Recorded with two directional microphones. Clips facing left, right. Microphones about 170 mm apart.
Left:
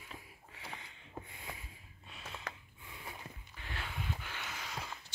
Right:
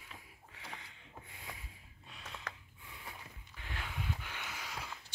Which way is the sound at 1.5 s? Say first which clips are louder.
Left 2 dB; centre (ahead or behind).